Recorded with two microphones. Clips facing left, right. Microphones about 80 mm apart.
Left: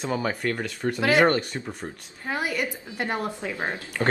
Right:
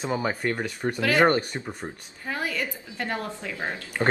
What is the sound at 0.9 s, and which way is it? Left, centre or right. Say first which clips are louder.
Speech: left 2 dB; centre.